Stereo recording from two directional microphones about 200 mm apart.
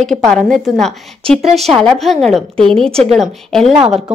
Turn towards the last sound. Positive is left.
turn(degrees=0)  # may be behind; listen again after turning